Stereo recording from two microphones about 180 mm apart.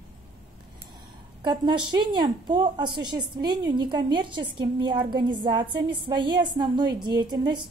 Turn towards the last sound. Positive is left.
turn(degrees=-25)  # may be behind; listen again after turning